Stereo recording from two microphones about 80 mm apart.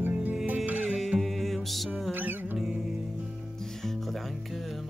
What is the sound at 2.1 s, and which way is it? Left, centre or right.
Music, right.